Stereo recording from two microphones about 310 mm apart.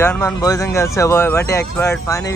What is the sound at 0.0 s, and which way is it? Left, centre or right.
Speech, centre.